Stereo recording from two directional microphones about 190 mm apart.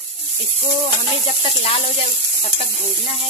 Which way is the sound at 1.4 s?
30° left (ahead or behind).